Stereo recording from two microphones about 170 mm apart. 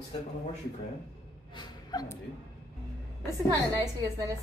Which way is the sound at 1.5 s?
25° left (ahead or behind).